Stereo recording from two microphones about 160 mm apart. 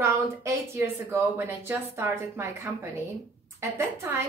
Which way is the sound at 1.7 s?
15° right (ahead or behind).